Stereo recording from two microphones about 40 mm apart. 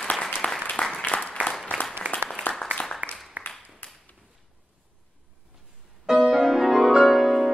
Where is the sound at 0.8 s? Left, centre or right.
Left.